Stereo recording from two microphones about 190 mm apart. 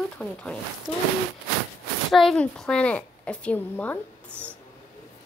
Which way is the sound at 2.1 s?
5° left (ahead or behind).